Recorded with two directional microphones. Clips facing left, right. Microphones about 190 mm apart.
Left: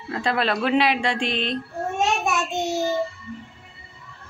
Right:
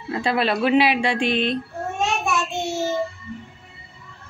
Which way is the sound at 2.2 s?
15° left (ahead or behind).